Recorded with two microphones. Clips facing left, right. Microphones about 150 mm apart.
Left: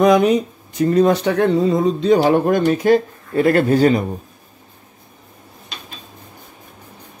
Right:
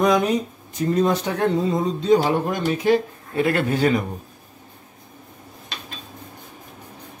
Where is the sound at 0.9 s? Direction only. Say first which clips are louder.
Left 6 dB; 75° left (ahead or behind); by 4.0 s 40° left (ahead or behind).